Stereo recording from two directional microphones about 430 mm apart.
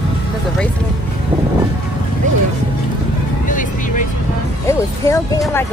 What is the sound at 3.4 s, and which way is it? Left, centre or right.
Music, centre.